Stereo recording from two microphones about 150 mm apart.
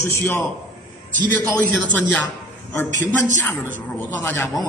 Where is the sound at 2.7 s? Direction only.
20° left (ahead or behind).